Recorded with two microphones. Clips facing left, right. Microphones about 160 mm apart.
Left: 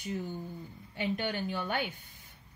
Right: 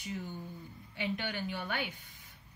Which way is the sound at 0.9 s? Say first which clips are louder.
Left 4 dB; 45° left (ahead or behind).